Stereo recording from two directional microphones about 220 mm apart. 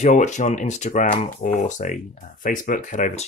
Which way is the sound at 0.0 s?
30° left (ahead or behind).